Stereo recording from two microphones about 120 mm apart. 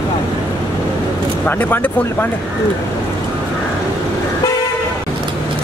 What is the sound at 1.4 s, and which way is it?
Speech, 15° left (ahead or behind).